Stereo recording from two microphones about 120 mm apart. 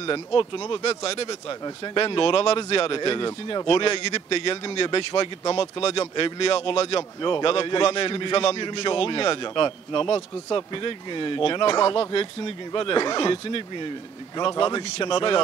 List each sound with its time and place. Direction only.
0.0 s a man's voice: 45° left (ahead or behind)
3.6 s a man's voice: 50° left (ahead or behind)